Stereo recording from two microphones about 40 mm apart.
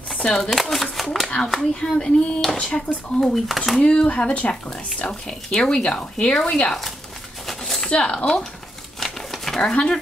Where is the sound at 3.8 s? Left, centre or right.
Left.